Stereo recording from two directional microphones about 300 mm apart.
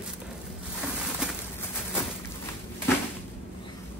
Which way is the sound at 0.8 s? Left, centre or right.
Centre.